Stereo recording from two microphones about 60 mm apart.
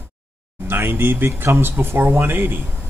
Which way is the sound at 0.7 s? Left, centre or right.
Right.